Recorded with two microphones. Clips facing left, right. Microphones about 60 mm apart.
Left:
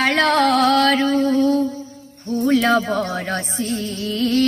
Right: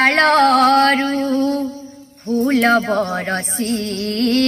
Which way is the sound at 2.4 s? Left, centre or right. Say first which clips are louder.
Right 2 dB; right.